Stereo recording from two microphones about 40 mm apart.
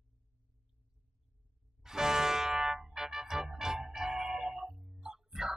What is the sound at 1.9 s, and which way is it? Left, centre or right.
Music, centre.